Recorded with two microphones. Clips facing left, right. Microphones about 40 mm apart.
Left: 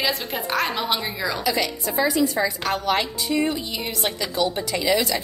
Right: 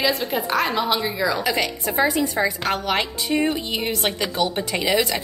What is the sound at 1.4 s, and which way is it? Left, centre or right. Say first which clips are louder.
Speech: right 1 dB; right.